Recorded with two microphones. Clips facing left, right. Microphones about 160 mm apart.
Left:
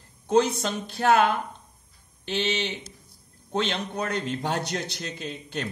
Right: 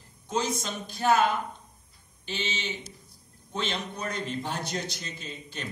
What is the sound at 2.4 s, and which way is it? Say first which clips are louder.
A man's voice: left 4 dB; 65° left (ahead or behind).